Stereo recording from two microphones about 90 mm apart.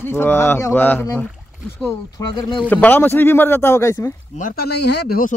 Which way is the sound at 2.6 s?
20° left (ahead or behind).